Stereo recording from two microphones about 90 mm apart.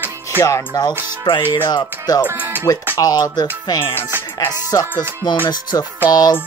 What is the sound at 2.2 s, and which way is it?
Speech, 20° right (ahead or behind).